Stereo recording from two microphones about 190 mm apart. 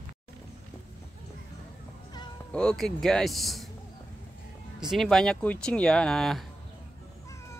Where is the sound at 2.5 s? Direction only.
5° left (ahead or behind).